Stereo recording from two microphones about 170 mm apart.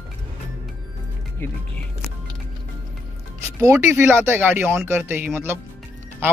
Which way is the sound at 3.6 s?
15° right (ahead or behind).